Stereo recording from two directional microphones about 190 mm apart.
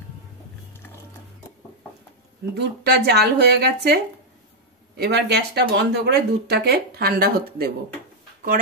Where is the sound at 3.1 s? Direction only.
60° right (ahead or behind).